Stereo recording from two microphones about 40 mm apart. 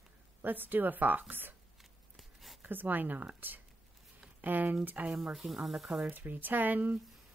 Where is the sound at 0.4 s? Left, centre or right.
Right.